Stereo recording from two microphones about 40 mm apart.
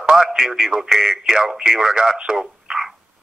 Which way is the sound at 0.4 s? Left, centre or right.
Centre.